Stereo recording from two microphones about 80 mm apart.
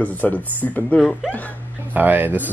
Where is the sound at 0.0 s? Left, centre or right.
Left.